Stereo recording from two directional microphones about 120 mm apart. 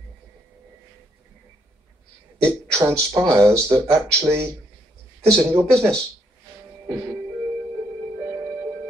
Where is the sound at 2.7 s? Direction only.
25° right (ahead or behind).